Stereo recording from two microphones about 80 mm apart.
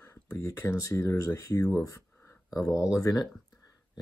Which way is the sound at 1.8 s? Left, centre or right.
Left.